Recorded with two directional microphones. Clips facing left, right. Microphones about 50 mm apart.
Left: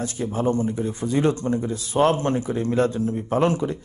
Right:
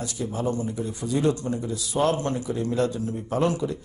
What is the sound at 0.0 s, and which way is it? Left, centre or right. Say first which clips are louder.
A man's voice: left 4 dB; left.